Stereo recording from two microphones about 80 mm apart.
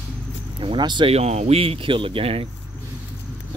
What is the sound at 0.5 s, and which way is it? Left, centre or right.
Speech, right.